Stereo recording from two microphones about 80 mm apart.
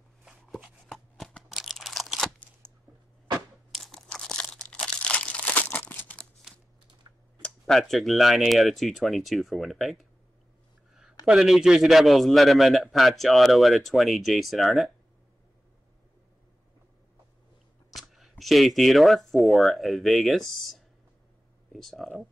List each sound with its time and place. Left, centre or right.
0.9 s shuffling cards: centre
1.5 s crunch: centre
2.6 s a sound: centre
3.7 s crunch: centre
4.1 s crumpling: centre
7.4 s a man's voice: centre
11.2 s a man's voice: centre
17.9 s a sound: centre
18.4 s a man's voice: centre